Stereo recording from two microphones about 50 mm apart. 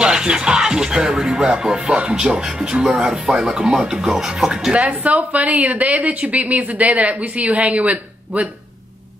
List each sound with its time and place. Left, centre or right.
0.0 s speech: centre
4.7 s a woman's voice: right